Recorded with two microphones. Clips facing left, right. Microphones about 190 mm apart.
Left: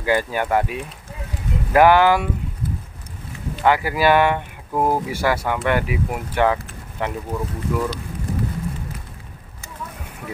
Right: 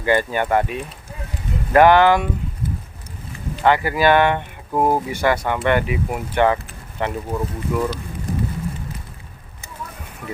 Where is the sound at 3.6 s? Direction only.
5° left (ahead or behind).